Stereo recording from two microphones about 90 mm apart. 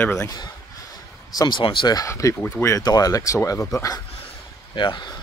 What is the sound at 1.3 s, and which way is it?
Speech, 45° left (ahead or behind).